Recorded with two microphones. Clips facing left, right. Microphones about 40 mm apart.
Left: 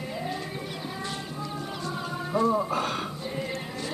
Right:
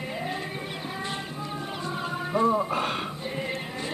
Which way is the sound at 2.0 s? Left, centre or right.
Right.